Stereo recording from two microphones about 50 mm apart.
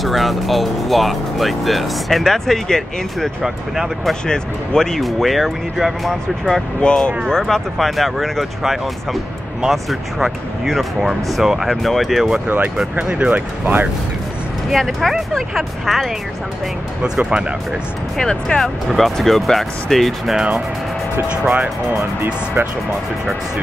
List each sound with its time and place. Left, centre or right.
0.0 s speech: centre
3.4 s speech: centre
4.1 s speech: centre
5.0 s speech: centre
6.8 s speech: centre
7.7 s speech: centre
12.4 s speech: right
14.9 s speech: centre
17.0 s speech: centre
18.1 s speech: centre
18.9 s speech: centre